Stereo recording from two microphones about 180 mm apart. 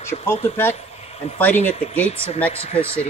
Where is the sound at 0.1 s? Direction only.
35° left (ahead or behind).